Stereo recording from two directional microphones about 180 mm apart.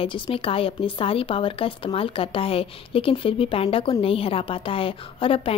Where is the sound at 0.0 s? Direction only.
30° left (ahead or behind).